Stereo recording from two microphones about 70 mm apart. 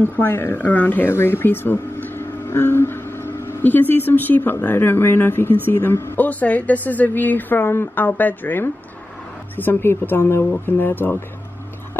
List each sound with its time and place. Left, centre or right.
0.0 s a woman's voice: left
6.1 s a woman's voice: left